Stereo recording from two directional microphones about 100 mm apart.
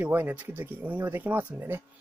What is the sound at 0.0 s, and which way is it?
Speech, 15° right (ahead or behind).